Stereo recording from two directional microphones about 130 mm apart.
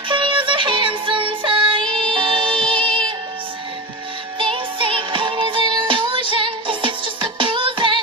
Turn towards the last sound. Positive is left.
turn(degrees=-40)  # may be behind; listen again after turning